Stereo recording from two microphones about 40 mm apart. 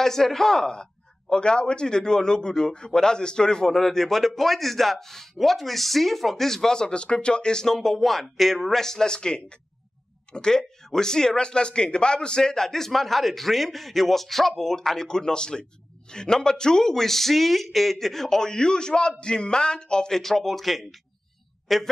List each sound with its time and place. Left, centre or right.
0.0 s a man's voice: centre